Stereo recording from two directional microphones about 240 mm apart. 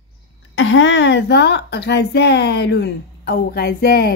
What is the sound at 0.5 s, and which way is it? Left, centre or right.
A woman's voice, left.